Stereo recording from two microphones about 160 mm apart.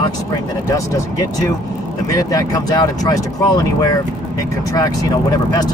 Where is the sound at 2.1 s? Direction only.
20° left (ahead or behind).